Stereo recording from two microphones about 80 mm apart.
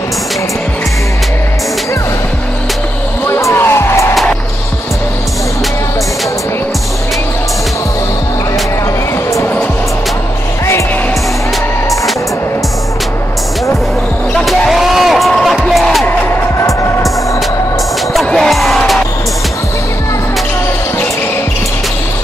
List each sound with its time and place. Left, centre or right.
3.3 s music: left
14.7 s music: centre
16.1 s music: left
18.1 s music: centre